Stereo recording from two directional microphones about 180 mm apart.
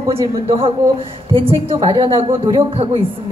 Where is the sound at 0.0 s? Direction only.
30° right (ahead or behind).